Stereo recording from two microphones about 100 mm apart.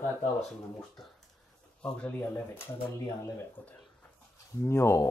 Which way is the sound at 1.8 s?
10° left (ahead or behind).